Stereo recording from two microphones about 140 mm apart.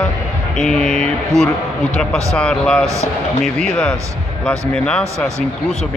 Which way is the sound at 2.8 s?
20° right (ahead or behind).